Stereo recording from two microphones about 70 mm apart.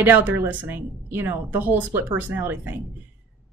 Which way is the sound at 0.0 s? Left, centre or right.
Right.